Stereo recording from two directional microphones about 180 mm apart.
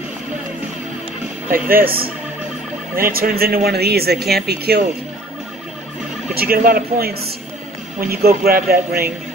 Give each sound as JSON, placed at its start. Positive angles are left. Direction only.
{"t": 1.5, "sound": "speech", "side_deg": -55}
{"t": 6.3, "sound": "speech", "side_deg": -55}